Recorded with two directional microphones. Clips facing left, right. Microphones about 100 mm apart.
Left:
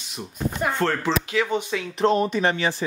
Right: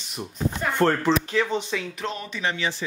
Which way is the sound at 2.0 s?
40° left (ahead or behind).